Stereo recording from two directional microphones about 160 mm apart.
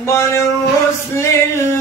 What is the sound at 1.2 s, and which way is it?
Music, 15° left (ahead or behind).